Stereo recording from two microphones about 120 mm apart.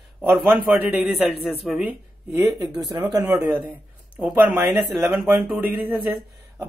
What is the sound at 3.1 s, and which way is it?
Speech, 30° right (ahead or behind).